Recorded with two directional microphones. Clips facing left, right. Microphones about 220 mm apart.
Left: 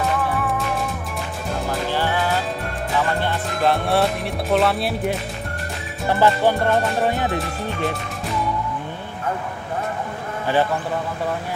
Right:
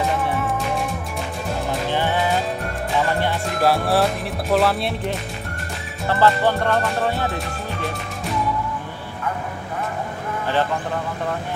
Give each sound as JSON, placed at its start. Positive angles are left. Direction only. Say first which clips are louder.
{"t": 1.9, "sound": "music", "louder": "right 2 dB", "side_deg": -15}
{"t": 3.7, "sound": "speech", "louder": "even", "side_deg": 0}
{"t": 6.0, "sound": "music", "louder": "left 1 dB", "side_deg": 15}